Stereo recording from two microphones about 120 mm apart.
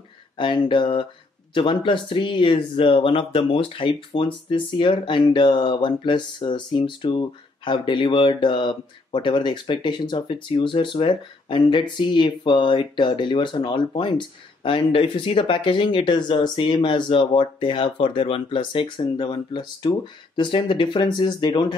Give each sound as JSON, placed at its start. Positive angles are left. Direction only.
{"t": 0.4, "sound": "speech", "side_deg": 40}